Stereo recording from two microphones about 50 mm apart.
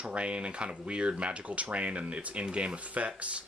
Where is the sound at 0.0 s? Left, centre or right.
Right.